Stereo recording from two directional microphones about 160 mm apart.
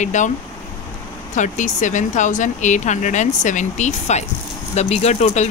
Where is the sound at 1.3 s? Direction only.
50° left (ahead or behind).